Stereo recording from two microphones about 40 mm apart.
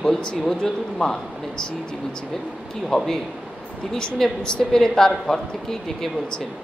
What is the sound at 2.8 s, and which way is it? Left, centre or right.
A man's voice, centre.